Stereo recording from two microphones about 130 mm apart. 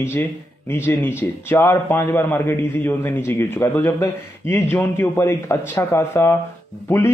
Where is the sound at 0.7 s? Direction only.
15° left (ahead or behind).